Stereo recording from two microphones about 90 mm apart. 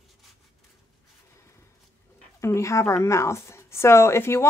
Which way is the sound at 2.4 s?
35° left (ahead or behind).